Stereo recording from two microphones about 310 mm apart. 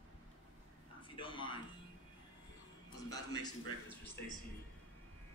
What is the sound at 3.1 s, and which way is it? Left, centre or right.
Speech, centre.